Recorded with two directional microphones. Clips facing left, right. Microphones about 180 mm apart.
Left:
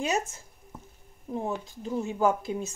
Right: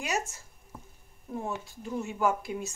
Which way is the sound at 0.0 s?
20° left (ahead or behind).